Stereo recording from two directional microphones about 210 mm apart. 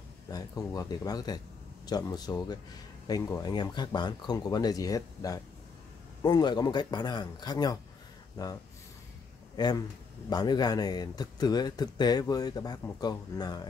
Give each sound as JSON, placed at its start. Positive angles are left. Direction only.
{"t": 0.3, "sound": "speech", "side_deg": 15}
{"t": 9.6, "sound": "speech", "side_deg": 20}